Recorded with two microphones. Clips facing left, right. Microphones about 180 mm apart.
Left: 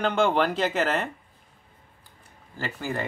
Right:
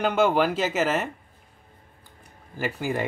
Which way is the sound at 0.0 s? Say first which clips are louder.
Right 1 dB; 5° right (ahead or behind).